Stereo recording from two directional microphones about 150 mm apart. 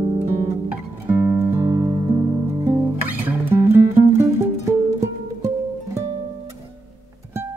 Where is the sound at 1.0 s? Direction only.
10° right (ahead or behind).